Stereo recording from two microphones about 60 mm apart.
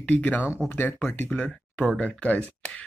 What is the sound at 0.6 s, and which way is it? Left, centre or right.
Speech, left.